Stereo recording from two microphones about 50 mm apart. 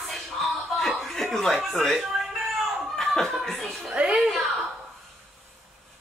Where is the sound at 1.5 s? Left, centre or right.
Centre.